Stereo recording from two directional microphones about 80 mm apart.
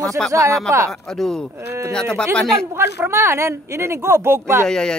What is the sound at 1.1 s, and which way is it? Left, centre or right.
Speech, centre.